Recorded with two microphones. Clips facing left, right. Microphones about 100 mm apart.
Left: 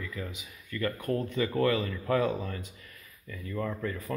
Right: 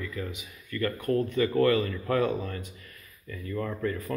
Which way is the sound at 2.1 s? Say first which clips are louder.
Left 1 dB; 15° left (ahead or behind).